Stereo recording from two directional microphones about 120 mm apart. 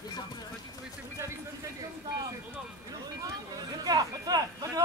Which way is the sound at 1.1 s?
25° right (ahead or behind).